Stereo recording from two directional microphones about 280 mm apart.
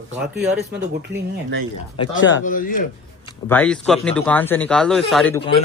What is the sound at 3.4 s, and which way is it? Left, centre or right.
Speech, centre.